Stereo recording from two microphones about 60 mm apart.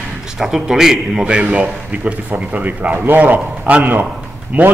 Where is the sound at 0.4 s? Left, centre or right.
Centre.